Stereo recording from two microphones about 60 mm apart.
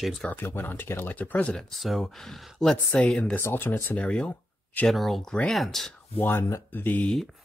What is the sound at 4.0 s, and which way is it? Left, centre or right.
Speech, centre.